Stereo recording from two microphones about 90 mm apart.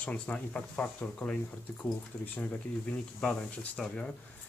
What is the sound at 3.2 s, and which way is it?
Speech, 10° left (ahead or behind).